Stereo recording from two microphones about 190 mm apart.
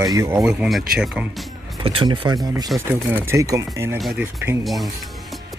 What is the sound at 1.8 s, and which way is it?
Speech, 25° right (ahead or behind).